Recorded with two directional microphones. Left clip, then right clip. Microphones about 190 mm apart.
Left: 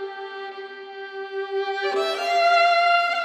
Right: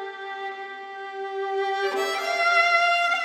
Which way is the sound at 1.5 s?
20° right (ahead or behind).